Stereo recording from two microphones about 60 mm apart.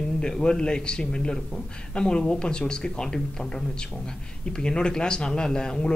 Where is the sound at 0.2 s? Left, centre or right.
Centre.